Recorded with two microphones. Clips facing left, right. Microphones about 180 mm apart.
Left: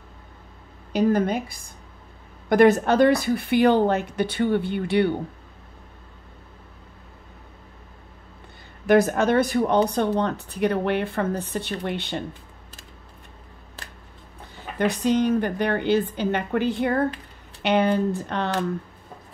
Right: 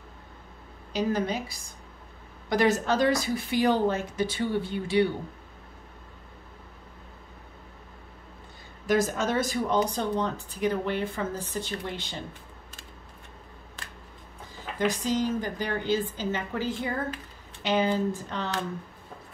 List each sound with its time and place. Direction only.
0.9 s a woman's voice: 55° left (ahead or behind)
8.8 s a woman's voice: 60° left (ahead or behind)
14.8 s a woman's voice: 65° left (ahead or behind)